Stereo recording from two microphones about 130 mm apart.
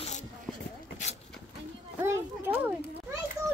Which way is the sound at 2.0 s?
20° right (ahead or behind).